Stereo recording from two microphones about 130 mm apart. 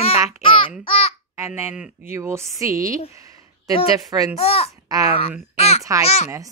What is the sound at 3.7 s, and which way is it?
Speech, 45° left (ahead or behind).